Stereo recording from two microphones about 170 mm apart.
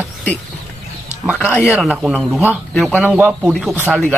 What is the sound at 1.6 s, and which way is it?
Speech, centre (ahead or behind).